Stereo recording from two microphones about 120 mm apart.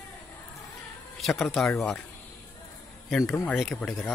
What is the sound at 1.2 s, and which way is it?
Speech, centre (ahead or behind).